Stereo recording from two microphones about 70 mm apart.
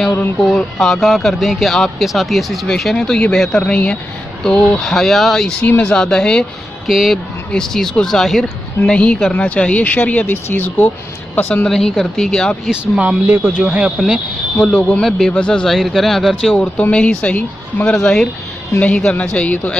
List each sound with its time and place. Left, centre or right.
0.0 s a woman's voice: left
0.4 s speech: centre
6.9 s a woman's voice: centre; by 11.6 s left
11.6 s speech: centre
12.6 s speech: centre
13.3 s speech: right
14.9 s speech: centre
17.9 s a woman's voice: centre